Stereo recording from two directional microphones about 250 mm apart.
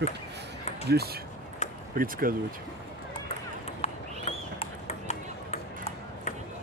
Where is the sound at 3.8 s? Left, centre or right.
Left.